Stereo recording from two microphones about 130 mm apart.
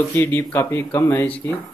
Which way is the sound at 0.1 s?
20° left (ahead or behind).